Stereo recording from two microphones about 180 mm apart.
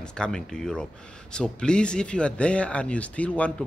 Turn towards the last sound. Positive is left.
turn(degrees=5)  # may be behind; listen again after turning